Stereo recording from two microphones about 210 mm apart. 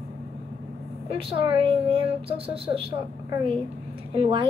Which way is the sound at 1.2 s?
25° right (ahead or behind).